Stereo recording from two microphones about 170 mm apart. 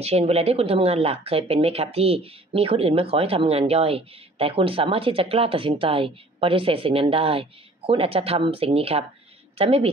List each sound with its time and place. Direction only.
0.0 s speech: 35° right (ahead or behind)